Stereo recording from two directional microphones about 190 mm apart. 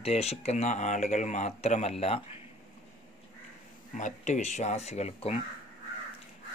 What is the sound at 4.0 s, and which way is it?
Speech, 40° left (ahead or behind).